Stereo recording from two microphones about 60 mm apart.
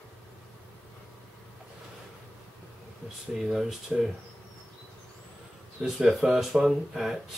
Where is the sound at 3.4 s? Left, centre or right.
Centre.